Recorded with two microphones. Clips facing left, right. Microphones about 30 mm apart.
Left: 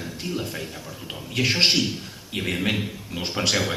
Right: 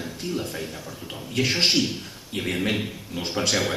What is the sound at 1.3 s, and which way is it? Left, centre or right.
A man's voice, centre.